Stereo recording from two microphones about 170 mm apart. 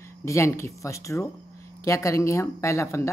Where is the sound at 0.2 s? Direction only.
15° left (ahead or behind).